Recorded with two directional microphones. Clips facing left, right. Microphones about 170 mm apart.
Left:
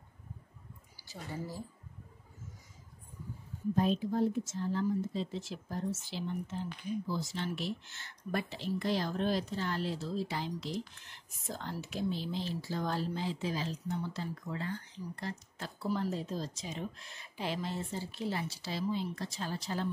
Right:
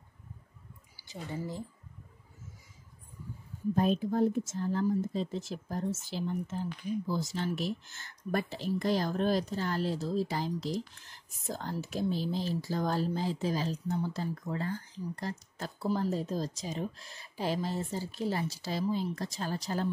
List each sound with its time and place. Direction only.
3.7 s speech: 50° right (ahead or behind)